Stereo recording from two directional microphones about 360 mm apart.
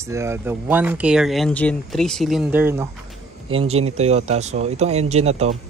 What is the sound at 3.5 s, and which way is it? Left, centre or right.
Speech, centre.